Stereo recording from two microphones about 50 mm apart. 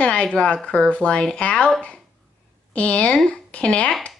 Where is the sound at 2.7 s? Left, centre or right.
Left.